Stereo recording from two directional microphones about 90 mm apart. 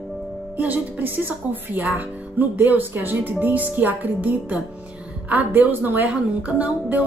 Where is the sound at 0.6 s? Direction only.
20° right (ahead or behind).